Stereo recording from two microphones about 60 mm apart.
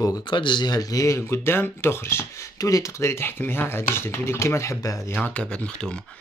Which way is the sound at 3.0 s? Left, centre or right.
Left.